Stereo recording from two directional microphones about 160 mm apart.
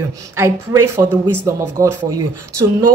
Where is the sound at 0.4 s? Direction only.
15° right (ahead or behind).